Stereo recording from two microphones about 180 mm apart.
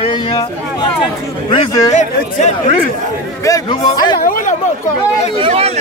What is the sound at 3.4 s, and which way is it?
Speech, 20° left (ahead or behind).